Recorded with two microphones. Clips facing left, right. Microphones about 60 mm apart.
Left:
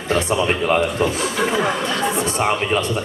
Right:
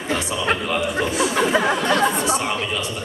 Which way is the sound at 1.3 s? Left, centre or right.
Right.